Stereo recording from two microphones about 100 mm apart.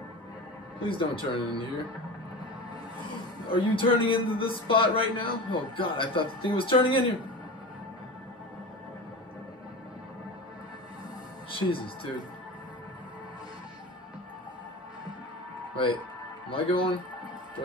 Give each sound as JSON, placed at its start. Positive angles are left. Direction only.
{"t": 0.8, "sound": "speech", "side_deg": 60}
{"t": 3.5, "sound": "speech", "side_deg": 55}
{"t": 11.5, "sound": "speech", "side_deg": 60}
{"t": 15.7, "sound": "speech", "side_deg": 55}